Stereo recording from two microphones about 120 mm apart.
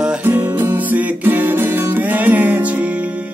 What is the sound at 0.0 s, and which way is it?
Music, 5° right (ahead or behind).